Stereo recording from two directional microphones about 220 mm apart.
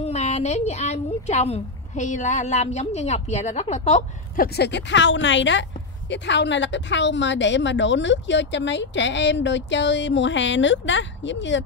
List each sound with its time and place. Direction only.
0.0 s a woman's voice: 30° left (ahead or behind)
4.6 s a woman's voice: 50° left (ahead or behind)